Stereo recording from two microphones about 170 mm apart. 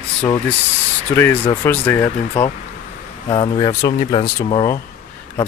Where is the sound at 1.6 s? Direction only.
15° left (ahead or behind).